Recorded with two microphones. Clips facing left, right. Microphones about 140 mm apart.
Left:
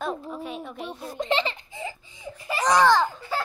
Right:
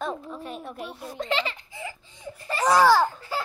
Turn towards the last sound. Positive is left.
turn(degrees=-5)  # may be behind; listen again after turning